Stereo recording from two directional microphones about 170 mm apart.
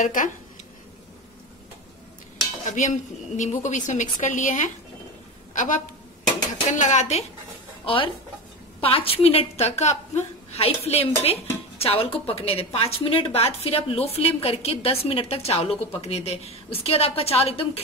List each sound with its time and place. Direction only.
0.0 s a woman's voice: 50° left (ahead or behind)
2.8 s a woman's voice: 50° left (ahead or behind)